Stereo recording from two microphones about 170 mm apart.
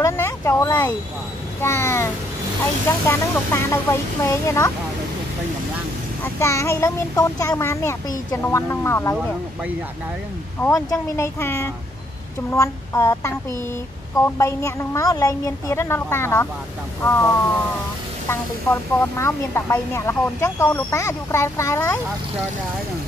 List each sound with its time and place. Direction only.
0.0 s a sound: 15° left (ahead or behind)
1.6 s speech: 15° left (ahead or behind)
3.1 s speech: 15° left (ahead or behind)
6.2 s speech: 15° left (ahead or behind)
10.6 s speech: 20° left (ahead or behind)
18.3 s speech: 15° left (ahead or behind)